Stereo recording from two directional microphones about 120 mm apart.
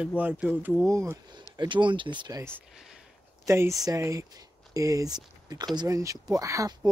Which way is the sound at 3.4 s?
25° right (ahead or behind).